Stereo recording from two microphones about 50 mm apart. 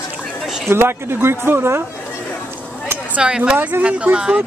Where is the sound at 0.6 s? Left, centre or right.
Right.